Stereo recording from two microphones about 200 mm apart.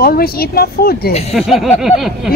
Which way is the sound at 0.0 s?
50° left (ahead or behind).